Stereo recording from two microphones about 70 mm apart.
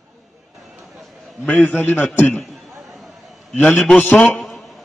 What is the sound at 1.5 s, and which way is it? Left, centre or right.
Speech, left.